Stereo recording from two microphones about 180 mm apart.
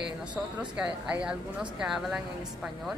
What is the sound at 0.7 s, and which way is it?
Speech, 5° right (ahead or behind).